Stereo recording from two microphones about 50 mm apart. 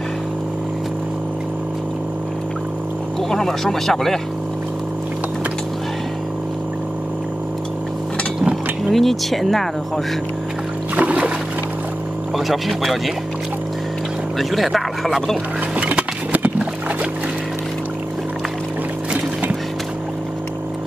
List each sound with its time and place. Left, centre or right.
3.3 s speech: centre
8.9 s speech: centre
11.0 s a sound: right
12.4 s speech: centre
14.5 s speech: centre
15.7 s boat: right